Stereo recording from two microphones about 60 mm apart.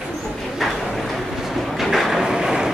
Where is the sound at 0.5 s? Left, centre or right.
Centre.